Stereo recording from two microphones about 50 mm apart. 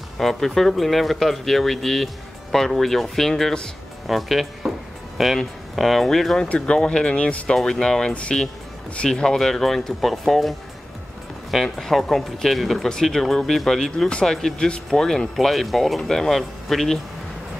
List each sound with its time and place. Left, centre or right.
0.2 s speech: centre
4.1 s music: centre
5.8 s speech: centre
6.5 s speech: left
7.5 s speech: centre
11.5 s speech: centre